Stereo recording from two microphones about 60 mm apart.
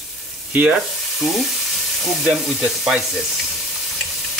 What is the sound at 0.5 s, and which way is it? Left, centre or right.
Speech, right.